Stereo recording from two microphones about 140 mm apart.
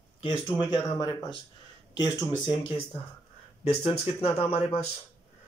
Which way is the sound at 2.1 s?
30° left (ahead or behind).